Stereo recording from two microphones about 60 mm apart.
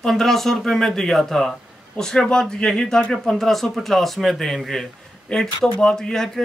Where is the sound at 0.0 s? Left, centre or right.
Centre.